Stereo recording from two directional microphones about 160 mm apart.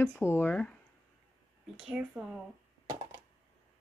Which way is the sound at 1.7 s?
5° right (ahead or behind).